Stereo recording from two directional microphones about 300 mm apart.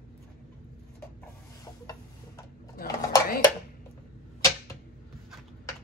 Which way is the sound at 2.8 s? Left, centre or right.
Left.